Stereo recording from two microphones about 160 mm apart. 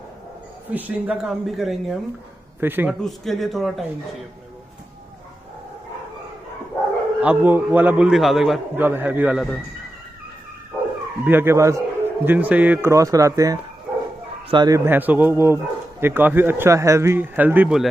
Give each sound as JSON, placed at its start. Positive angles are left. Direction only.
{"t": 0.7, "sound": "speech", "side_deg": -10}
{"t": 2.6, "sound": "speech", "side_deg": -10}
{"t": 3.0, "sound": "speech", "side_deg": 0}
{"t": 7.2, "sound": "speech", "side_deg": -10}
{"t": 8.7, "sound": "speech", "side_deg": -10}
{"t": 11.2, "sound": "a man's voice", "side_deg": -15}
{"t": 14.9, "sound": "speech", "side_deg": -10}